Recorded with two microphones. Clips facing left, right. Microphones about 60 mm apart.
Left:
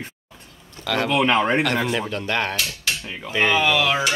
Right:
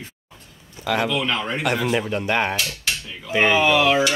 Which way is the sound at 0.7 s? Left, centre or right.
Centre.